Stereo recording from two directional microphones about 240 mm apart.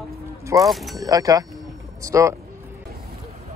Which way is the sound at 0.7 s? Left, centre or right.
Centre.